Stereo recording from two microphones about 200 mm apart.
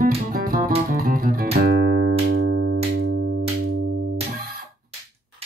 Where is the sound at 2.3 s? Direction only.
55° right (ahead or behind).